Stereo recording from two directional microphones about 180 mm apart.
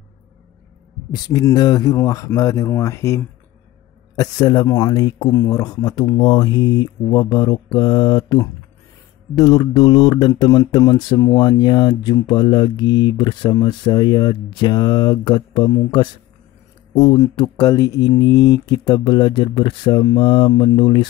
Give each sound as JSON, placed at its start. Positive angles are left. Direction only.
{"t": 1.1, "sound": "speech", "side_deg": 20}